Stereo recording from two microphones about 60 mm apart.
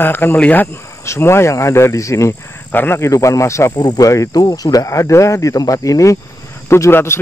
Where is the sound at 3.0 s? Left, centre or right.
Left.